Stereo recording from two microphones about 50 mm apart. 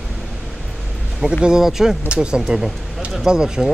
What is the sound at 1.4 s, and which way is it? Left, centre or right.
Speech, centre.